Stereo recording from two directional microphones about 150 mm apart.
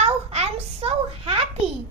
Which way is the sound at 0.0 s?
45° right (ahead or behind).